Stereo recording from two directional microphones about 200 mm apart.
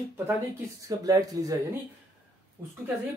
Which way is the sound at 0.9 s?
20° right (ahead or behind).